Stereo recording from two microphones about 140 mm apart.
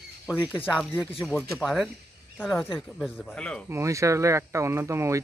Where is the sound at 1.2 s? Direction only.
Centre (ahead or behind).